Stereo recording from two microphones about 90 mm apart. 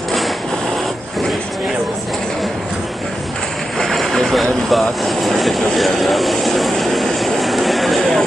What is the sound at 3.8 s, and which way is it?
Vehicle, centre (ahead or behind).